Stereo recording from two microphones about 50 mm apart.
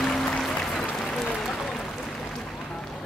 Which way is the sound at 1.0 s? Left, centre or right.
Centre.